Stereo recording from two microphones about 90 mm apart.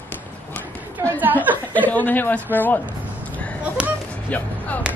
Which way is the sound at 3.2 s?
15° left (ahead or behind).